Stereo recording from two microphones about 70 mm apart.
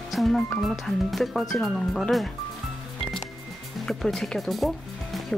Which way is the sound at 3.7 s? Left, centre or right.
Centre.